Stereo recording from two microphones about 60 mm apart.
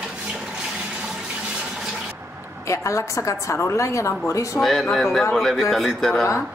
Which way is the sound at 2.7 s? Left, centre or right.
Left.